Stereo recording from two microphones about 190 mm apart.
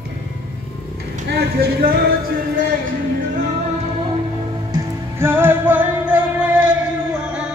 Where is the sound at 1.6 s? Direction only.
50° right (ahead or behind).